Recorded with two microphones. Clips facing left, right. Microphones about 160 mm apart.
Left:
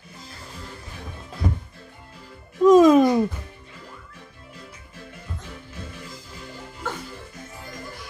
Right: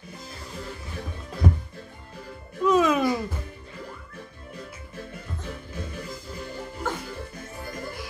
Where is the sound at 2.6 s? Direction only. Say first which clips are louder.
Left 8 dB; 40° left (ahead or behind).